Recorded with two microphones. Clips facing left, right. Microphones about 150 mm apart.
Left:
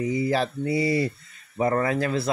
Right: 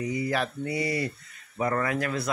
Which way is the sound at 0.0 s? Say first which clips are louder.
Left 4 dB; 25° left (ahead or behind).